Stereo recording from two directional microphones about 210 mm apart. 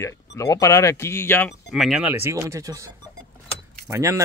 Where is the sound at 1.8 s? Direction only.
5° right (ahead or behind).